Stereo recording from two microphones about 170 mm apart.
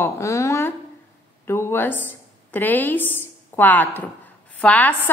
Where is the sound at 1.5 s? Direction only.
15° left (ahead or behind).